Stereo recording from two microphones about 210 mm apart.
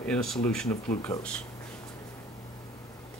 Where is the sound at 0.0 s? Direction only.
5° left (ahead or behind).